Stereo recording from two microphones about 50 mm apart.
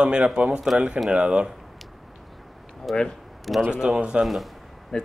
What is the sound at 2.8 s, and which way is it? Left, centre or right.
Speech, centre.